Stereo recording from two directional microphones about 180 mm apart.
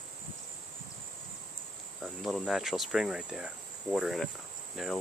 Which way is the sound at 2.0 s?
Centre (ahead or behind).